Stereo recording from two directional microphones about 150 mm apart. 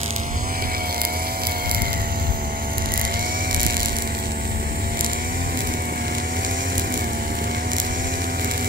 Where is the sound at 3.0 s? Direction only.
75° right (ahead or behind).